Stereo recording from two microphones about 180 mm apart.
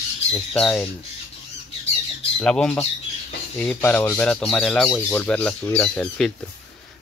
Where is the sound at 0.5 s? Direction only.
5° left (ahead or behind).